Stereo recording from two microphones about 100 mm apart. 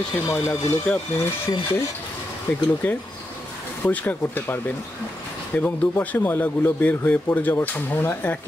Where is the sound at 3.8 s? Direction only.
15° left (ahead or behind).